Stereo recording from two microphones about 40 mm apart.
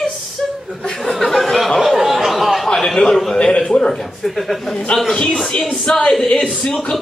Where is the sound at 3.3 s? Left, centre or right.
Left.